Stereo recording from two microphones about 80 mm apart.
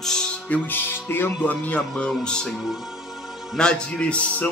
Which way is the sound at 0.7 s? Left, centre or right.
Left.